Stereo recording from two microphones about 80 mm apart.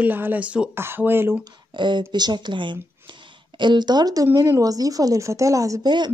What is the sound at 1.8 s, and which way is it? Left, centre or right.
A woman's voice, right.